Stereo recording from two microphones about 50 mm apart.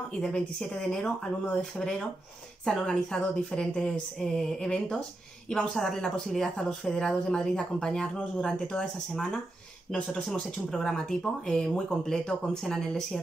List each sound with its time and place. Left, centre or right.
0.3 s a woman's voice: centre